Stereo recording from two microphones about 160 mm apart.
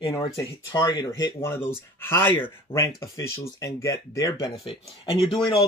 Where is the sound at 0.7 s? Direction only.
25° left (ahead or behind).